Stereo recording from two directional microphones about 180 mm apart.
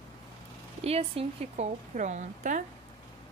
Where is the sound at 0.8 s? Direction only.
35° right (ahead or behind).